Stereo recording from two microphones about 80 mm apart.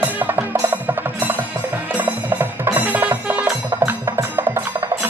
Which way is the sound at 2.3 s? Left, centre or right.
Right.